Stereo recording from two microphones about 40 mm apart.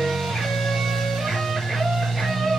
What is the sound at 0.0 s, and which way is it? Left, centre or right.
Music, centre.